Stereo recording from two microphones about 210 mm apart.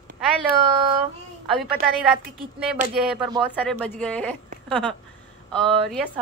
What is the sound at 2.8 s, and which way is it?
Speech, 35° right (ahead or behind).